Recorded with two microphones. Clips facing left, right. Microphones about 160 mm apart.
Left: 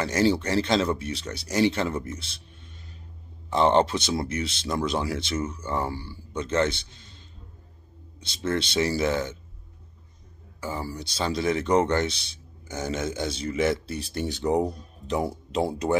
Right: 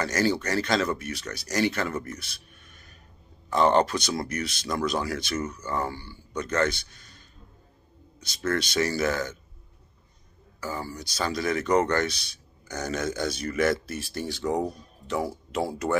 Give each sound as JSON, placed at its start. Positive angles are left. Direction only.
{"t": 0.0, "sound": "speech", "side_deg": 25}
{"t": 2.0, "sound": "music", "side_deg": 25}
{"t": 3.4, "sound": "a man's voice", "side_deg": 25}
{"t": 10.6, "sound": "speech", "side_deg": 25}